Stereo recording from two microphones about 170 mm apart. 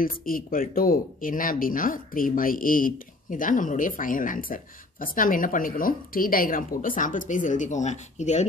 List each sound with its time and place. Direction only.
0.0 s speech: 55° left (ahead or behind)